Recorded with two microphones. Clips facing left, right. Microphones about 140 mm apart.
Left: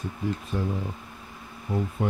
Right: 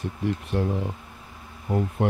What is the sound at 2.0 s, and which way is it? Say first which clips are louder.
Speech: right 4 dB; 65° right (ahead or behind).